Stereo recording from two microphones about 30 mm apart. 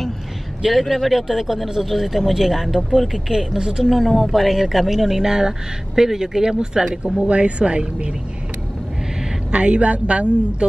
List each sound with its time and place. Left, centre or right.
0.7 s speech: centre
3.5 s speech: right
3.9 s speech: centre; by 6.9 s right
7.2 s speech: right
9.5 s speech: right